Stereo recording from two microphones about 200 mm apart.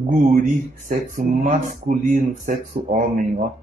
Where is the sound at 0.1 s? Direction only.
40° right (ahead or behind).